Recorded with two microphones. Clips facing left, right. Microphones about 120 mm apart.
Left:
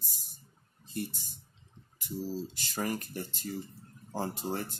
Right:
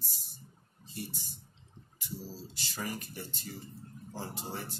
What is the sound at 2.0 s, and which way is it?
Speech, 55° left (ahead or behind).